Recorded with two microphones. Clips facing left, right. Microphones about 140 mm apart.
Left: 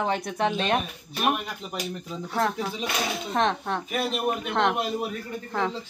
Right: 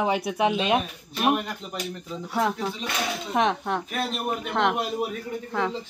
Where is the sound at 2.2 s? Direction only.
5° right (ahead or behind).